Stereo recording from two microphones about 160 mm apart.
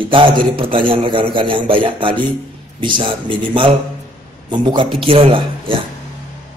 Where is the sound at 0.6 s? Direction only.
35° right (ahead or behind).